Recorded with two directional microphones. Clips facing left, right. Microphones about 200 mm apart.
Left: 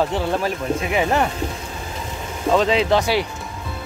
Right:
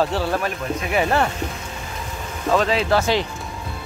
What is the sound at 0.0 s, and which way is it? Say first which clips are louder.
Speech: left 1 dB; 20° left (ahead or behind).